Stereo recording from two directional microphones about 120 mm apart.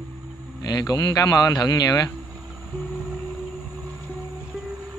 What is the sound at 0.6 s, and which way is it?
A man's voice, 35° left (ahead or behind).